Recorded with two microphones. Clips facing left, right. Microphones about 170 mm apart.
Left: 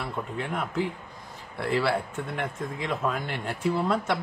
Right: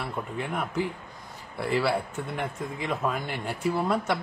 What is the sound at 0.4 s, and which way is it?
Speech, centre (ahead or behind).